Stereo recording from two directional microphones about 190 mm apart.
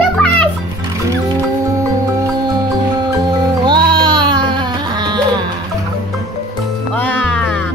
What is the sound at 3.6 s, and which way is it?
Music, 25° right (ahead or behind).